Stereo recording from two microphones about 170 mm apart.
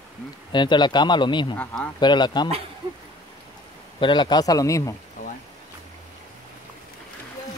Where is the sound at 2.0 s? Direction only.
25° left (ahead or behind).